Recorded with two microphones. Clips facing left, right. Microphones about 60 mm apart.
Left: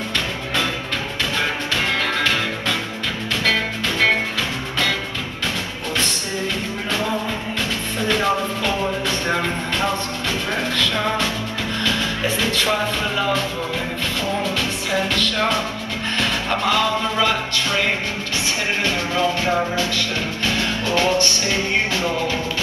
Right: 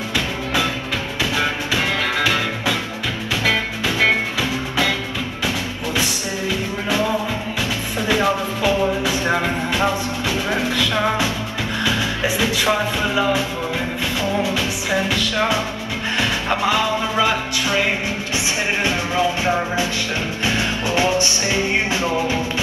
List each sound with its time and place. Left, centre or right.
2.1 s music: centre
8.1 s music: centre
14.4 s music: centre
18.9 s music: centre